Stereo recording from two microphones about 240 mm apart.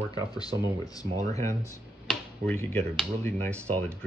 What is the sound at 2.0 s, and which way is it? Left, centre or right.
Speech, centre.